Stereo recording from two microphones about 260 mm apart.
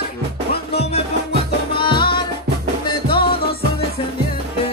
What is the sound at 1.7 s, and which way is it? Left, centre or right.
Music, centre.